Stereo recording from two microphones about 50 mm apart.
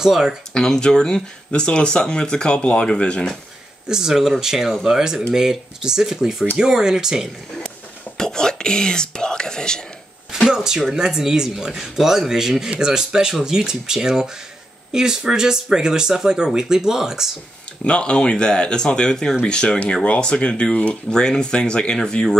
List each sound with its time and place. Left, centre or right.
0.0 s speech: centre
0.5 s speech: centre
3.9 s speech: centre
8.2 s speech: centre
10.5 s speech: centre
17.8 s speech: left
21.1 s speech: centre